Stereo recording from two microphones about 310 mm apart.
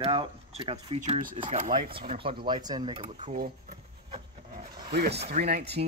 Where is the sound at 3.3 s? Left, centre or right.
Right.